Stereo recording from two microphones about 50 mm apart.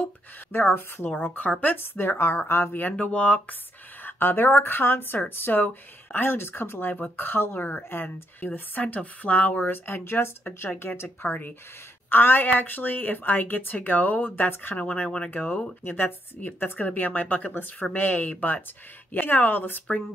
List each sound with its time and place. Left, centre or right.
0.5 s speech: left
1.1 s speech: left
3.0 s speech: left
4.0 s speech: left
8.8 s speech: left
11.2 s a woman's voice: left
15.0 s speech: left
15.3 s a woman's voice: left